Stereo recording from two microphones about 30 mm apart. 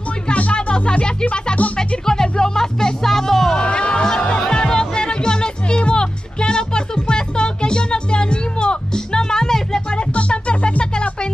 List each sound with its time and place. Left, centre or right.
0.3 s music: left
0.6 s music: left
1.6 s music: left
2.2 s music: left
3.5 s music: left
4.0 s music: left
9.8 s music: left